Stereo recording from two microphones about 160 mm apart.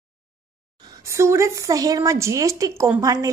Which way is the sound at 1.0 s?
15° right (ahead or behind).